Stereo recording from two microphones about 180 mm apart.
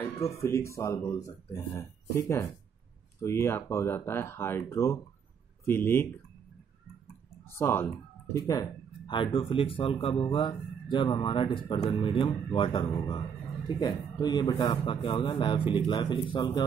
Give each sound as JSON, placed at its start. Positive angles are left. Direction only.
{"t": 0.4, "sound": "speech", "side_deg": 15}
{"t": 7.4, "sound": "speech", "side_deg": 15}